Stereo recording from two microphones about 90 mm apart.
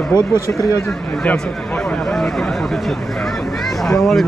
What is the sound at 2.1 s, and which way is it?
Speech, 5° left (ahead or behind).